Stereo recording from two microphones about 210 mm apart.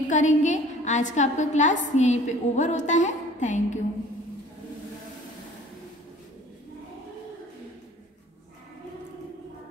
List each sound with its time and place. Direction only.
0.1 s a woman's voice: 35° left (ahead or behind)